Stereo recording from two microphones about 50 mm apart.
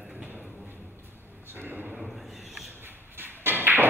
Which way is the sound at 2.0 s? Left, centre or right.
Centre.